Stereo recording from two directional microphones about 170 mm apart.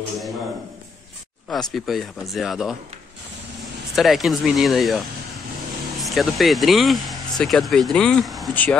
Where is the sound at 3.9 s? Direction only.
Centre (ahead or behind).